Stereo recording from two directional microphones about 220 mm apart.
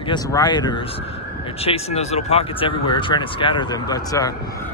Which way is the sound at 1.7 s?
30° left (ahead or behind).